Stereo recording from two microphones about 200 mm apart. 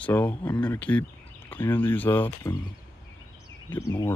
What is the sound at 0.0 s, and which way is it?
Speech, 5° left (ahead or behind).